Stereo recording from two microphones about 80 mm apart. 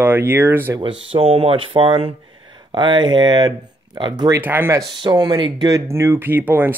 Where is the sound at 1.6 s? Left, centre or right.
Right.